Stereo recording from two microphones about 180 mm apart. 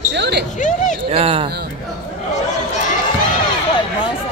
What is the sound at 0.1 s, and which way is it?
Basketball bounce, 70° right (ahead or behind).